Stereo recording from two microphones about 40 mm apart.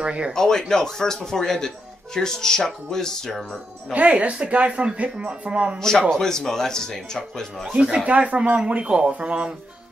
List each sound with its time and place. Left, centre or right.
0.0 s speech: right
0.3 s speech: centre
3.9 s speech: right
6.0 s speech: centre
7.7 s speech: right